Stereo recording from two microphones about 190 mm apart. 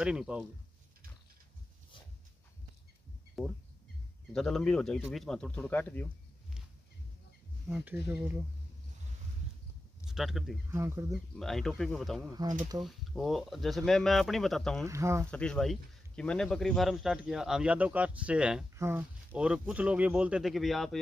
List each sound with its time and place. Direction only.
0.0 s speech: 5° right (ahead or behind)
4.3 s speech: centre (ahead or behind)
7.6 s speech: 10° right (ahead or behind)
10.0 s speech: centre (ahead or behind)
10.7 s speech: 15° right (ahead or behind)
11.3 s speech: centre (ahead or behind)
12.3 s speech: 20° right (ahead or behind)
12.8 s speech: centre (ahead or behind)
14.9 s speech: 15° right (ahead or behind)
15.3 s speech: 5° left (ahead or behind)